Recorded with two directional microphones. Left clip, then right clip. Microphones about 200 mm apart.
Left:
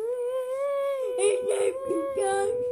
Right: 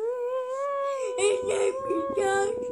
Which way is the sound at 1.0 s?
10° right (ahead or behind).